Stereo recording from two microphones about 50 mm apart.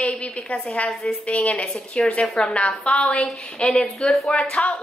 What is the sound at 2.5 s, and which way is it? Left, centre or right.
Speech, left.